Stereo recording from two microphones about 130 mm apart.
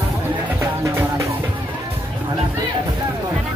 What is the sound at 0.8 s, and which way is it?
Music, 25° right (ahead or behind).